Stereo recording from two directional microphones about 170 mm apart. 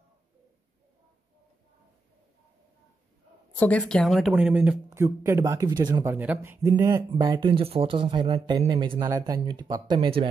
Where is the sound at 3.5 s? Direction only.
10° left (ahead or behind); by 6.0 s 25° right (ahead or behind).